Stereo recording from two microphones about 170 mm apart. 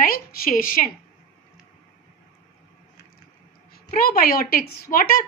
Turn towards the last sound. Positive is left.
turn(degrees=55)  # may be behind; listen again after turning